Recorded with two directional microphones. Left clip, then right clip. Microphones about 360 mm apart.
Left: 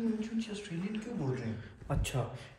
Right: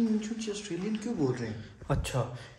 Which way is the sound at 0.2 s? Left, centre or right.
Centre.